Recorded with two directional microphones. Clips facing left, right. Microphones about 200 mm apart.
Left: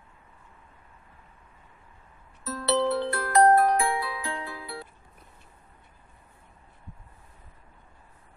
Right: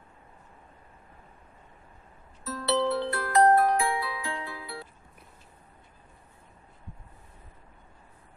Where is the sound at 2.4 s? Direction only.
50° left (ahead or behind).